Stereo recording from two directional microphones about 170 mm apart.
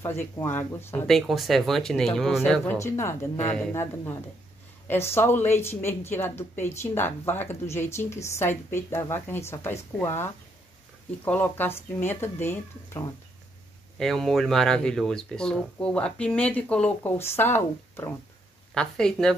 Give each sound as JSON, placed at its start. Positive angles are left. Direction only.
{"t": 0.0, "sound": "speech", "side_deg": 15}
{"t": 1.0, "sound": "speech", "side_deg": 0}
{"t": 2.6, "sound": "speech", "side_deg": 15}
{"t": 13.9, "sound": "speech", "side_deg": 0}